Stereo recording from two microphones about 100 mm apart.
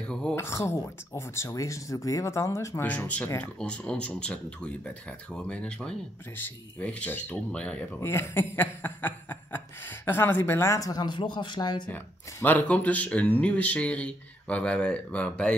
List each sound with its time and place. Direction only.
0.0 s a sound: 10° left (ahead or behind)
0.4 s speech: 30° left (ahead or behind); by 7.8 s 10° left (ahead or behind)
8.0 s speech: 25° left (ahead or behind); by 11.9 s 50° left (ahead or behind)
11.9 s speech: 20° left (ahead or behind)